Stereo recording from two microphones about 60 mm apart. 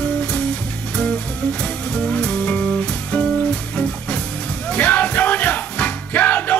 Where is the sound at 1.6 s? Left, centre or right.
Centre.